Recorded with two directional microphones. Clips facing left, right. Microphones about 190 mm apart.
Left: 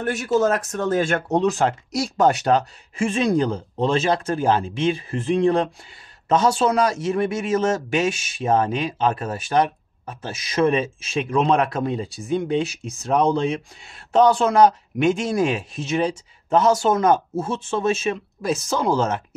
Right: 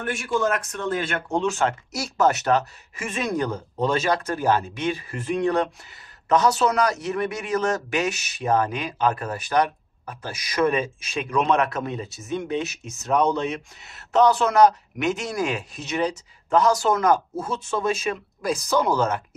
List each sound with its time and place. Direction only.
0.0 s speech: 40° left (ahead or behind)